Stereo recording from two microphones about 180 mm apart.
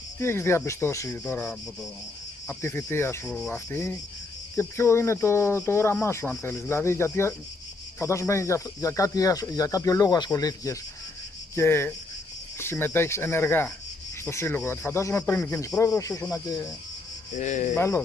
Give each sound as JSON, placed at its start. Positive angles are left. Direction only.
{"t": 0.2, "sound": "speech", "side_deg": 15}
{"t": 17.4, "sound": "cricket", "side_deg": 45}
{"t": 17.7, "sound": "speech", "side_deg": 15}